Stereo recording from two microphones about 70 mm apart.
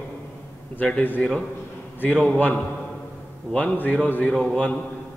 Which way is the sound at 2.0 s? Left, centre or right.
Centre.